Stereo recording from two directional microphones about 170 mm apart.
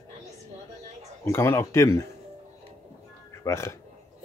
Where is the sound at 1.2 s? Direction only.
15° left (ahead or behind).